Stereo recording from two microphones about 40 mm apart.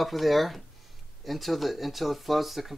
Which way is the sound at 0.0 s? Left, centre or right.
Centre.